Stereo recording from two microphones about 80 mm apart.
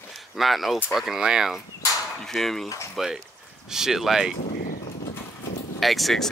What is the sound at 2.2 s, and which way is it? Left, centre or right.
Speech, centre.